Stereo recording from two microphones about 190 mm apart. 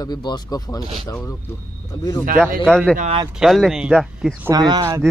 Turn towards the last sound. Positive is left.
turn(degrees=-20)  # may be behind; listen again after turning